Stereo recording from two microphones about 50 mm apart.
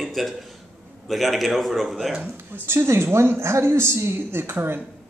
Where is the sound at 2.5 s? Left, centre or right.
Right.